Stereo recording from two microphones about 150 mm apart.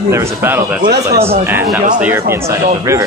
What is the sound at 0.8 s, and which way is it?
Speech, 90° right.